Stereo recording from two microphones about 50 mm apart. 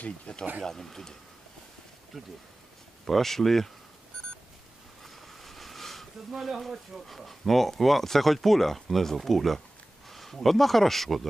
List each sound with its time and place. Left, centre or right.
0.3 s speech: left
0.7 s speech: centre
2.1 s speech: centre
5.0 s a sound: centre
7.1 s speech: centre